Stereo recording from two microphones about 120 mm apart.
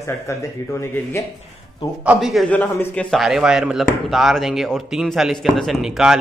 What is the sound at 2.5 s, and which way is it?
Speech, 15° left (ahead or behind).